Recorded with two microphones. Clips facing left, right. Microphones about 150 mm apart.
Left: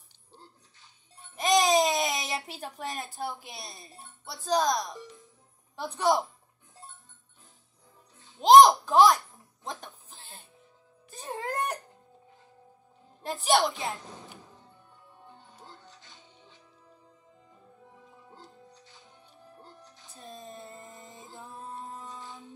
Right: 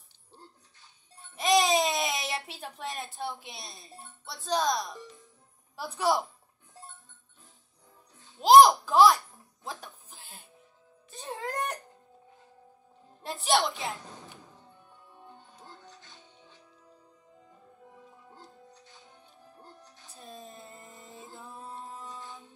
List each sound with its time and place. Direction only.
1.3 s a sound: centre (ahead or behind)
4.3 s speech: centre (ahead or behind)
5.0 s music: 20° left (ahead or behind)
5.8 s speech: 5° right (ahead or behind)
8.4 s a sound: 5° right (ahead or behind)
11.1 s music: centre (ahead or behind)
13.2 s speech: centre (ahead or behind)
20.2 s music: centre (ahead or behind)